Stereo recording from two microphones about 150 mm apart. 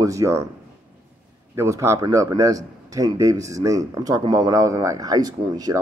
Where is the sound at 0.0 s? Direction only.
20° right (ahead or behind).